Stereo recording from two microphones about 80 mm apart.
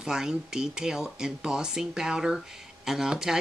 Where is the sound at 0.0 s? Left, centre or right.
Centre.